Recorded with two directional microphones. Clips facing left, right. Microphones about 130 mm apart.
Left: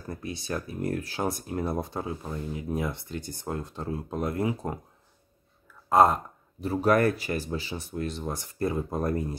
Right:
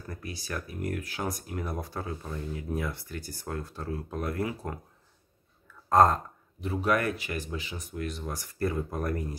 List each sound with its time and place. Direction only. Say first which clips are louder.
0.1 s speech: left 5 dB; 25° left (ahead or behind)
5.9 s speech: left 1 dB; 10° left (ahead or behind)
6.6 s speech: left 5 dB; 40° left (ahead or behind)